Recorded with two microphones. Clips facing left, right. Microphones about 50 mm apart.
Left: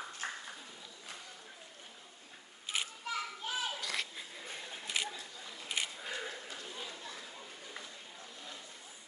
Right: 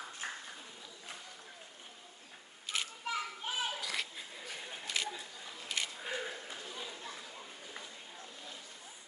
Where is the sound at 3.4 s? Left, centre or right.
Right.